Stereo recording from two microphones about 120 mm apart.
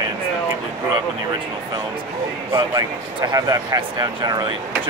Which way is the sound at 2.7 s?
35° right (ahead or behind).